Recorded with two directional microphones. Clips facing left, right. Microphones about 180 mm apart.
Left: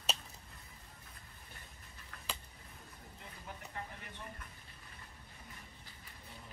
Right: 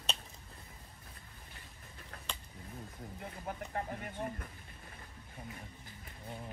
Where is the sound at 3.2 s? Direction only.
50° right (ahead or behind).